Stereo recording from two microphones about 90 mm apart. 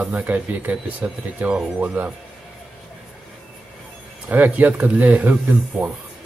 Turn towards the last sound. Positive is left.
turn(degrees=-20)  # may be behind; listen again after turning